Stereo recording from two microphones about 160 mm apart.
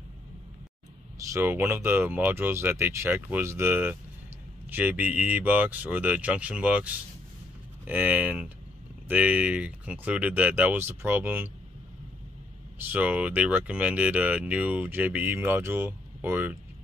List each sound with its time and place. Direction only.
1.1 s speech: 20° right (ahead or behind)
12.8 s speech: 10° right (ahead or behind)